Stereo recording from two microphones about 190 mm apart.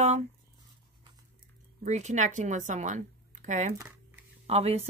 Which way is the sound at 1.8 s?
40° right (ahead or behind).